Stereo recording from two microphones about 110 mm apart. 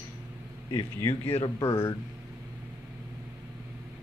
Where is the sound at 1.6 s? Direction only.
25° left (ahead or behind).